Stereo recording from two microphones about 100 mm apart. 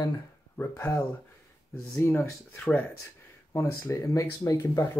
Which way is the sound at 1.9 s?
20° left (ahead or behind).